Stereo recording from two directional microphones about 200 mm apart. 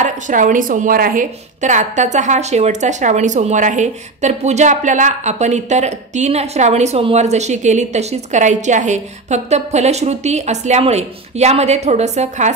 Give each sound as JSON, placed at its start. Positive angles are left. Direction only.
{"t": 0.0, "sound": "a woman's voice", "side_deg": -40}